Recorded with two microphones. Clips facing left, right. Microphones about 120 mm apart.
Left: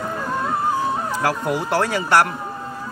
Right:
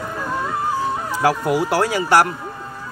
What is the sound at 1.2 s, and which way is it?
Speech, 10° right (ahead or behind).